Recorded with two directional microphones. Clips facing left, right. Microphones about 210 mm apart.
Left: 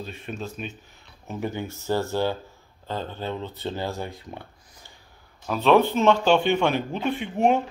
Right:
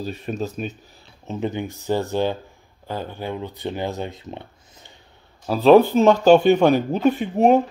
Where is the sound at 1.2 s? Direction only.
20° right (ahead or behind).